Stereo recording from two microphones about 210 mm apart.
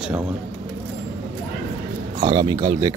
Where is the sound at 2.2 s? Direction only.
20° right (ahead or behind).